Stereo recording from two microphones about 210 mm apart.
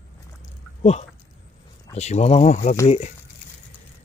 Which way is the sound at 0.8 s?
30° left (ahead or behind).